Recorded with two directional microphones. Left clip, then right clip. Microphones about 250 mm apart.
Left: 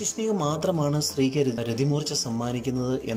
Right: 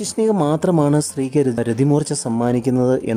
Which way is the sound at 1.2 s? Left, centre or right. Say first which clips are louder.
Right 5 dB; right.